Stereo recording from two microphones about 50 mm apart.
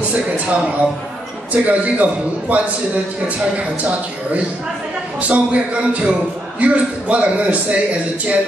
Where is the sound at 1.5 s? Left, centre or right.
Right.